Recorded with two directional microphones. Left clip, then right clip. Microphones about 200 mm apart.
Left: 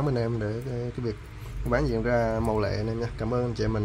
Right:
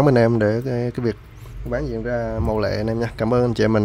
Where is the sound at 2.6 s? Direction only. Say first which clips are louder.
Right 7 dB; 30° right (ahead or behind).